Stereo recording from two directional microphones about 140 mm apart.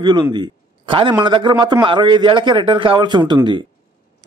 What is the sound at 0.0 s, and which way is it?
A man's voice, 35° right (ahead or behind).